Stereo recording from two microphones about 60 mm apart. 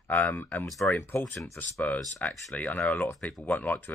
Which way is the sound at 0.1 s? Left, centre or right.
Left.